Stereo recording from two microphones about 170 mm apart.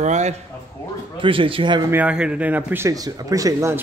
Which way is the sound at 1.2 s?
30° right (ahead or behind).